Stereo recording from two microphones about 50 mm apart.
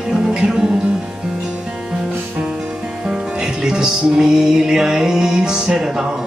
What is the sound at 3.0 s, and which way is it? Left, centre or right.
Music, centre.